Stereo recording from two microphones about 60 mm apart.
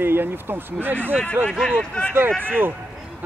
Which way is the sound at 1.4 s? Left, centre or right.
Right.